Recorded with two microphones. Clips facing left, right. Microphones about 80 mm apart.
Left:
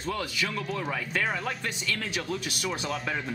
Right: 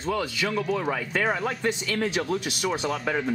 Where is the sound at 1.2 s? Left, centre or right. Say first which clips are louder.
Right 6 dB; centre.